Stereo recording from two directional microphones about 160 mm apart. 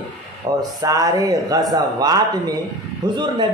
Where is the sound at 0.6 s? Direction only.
25° right (ahead or behind).